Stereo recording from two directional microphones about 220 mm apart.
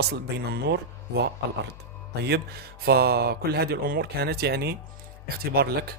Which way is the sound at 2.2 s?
45° right (ahead or behind).